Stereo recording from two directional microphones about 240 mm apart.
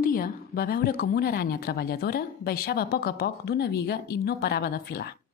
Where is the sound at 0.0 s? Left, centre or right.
Left.